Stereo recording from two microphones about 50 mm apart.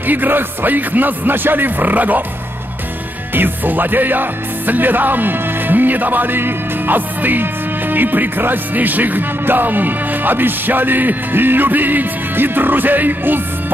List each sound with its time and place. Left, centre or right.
0.0 s music: right
3.3 s speech: right
7.9 s music: right